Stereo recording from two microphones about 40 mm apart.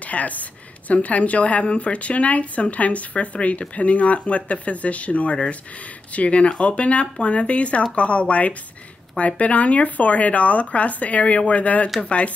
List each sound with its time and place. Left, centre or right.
0.0 s a woman's voice: left